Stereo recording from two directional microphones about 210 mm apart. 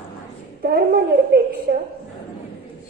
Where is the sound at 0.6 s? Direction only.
45° right (ahead or behind).